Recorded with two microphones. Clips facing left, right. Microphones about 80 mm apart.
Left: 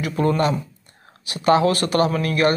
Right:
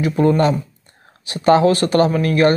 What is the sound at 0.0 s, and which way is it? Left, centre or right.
Speech, right.